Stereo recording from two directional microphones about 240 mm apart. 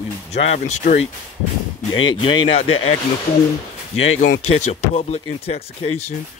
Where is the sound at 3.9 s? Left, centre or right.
Left.